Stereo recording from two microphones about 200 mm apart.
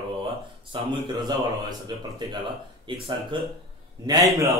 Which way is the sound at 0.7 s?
25° right (ahead or behind).